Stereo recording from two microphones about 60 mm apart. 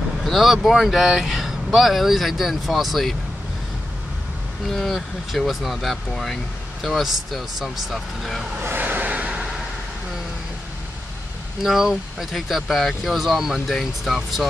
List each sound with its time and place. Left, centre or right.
0.2 s speech: centre
4.6 s speech: centre
8.6 s vehicle: right
11.6 s speech: centre